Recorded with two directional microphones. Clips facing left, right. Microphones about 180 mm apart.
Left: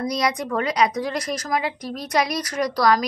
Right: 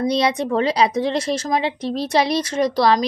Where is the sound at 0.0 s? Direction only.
30° right (ahead or behind).